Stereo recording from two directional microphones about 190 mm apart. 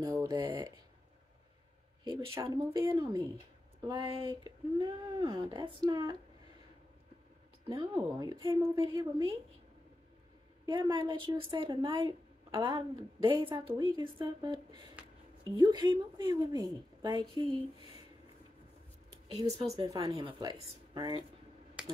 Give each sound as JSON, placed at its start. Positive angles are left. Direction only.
{"t": 0.0, "sound": "speech", "side_deg": -20}
{"t": 2.0, "sound": "a woman's voice", "side_deg": -15}
{"t": 7.6, "sound": "a woman's voice", "side_deg": -25}
{"t": 10.6, "sound": "a woman's voice", "side_deg": -25}
{"t": 19.4, "sound": "speech", "side_deg": -35}
{"t": 19.8, "sound": "a woman's voice", "side_deg": -20}
{"t": 21.8, "sound": "computer keyboard", "side_deg": -5}